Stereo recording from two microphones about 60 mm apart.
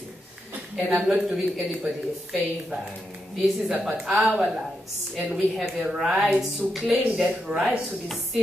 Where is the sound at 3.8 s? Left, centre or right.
Centre.